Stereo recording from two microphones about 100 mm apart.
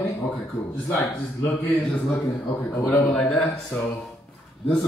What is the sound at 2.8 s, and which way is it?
Speech, 10° left (ahead or behind).